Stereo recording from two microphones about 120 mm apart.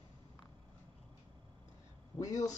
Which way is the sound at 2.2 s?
30° left (ahead or behind).